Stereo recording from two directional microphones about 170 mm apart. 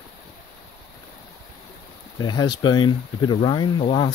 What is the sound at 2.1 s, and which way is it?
Speech, 25° left (ahead or behind).